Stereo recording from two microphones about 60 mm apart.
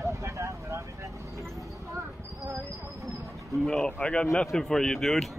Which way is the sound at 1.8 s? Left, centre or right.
Right.